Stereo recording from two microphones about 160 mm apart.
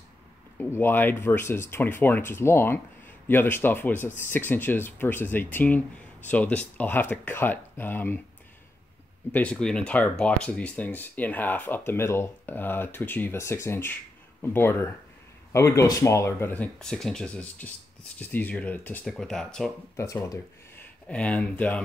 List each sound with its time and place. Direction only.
0.6 s speech: 15° left (ahead or behind)
9.3 s speech: 10° left (ahead or behind)
20.0 s speech: 20° left (ahead or behind)
21.1 s speech: 10° left (ahead or behind)